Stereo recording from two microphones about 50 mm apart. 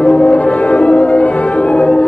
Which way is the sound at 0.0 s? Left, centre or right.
Left.